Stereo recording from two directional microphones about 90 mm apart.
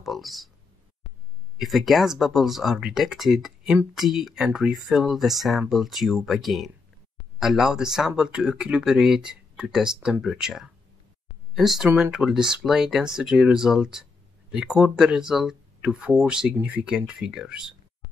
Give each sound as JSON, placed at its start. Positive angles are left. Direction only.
{"t": 0.0, "sound": "speech", "side_deg": 0}
{"t": 1.6, "sound": "speech", "side_deg": 0}